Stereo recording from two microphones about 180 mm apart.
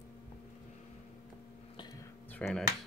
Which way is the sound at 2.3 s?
10° left (ahead or behind).